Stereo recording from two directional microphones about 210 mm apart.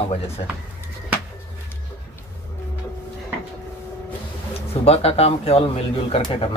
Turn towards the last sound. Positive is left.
turn(degrees=25)  # may be behind; listen again after turning